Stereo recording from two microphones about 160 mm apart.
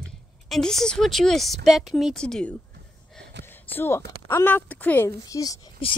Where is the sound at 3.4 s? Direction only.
15° left (ahead or behind).